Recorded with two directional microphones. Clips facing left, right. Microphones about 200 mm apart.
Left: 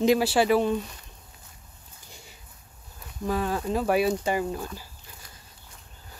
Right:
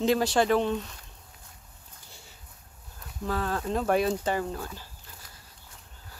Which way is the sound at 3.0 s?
15° left (ahead or behind).